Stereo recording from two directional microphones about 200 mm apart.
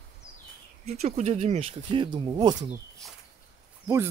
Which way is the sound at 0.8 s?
30° right (ahead or behind).